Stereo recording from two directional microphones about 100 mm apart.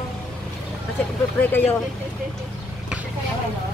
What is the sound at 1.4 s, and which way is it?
Speech, 15° left (ahead or behind).